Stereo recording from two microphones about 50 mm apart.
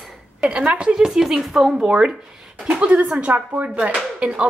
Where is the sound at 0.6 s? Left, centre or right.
Right.